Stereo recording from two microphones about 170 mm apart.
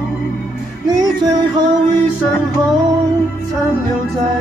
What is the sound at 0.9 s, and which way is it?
Music, 25° right (ahead or behind).